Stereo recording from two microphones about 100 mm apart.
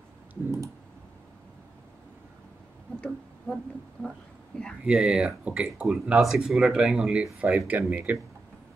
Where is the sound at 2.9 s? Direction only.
5° left (ahead or behind).